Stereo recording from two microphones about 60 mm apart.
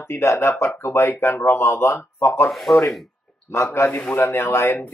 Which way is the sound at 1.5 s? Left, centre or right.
Left.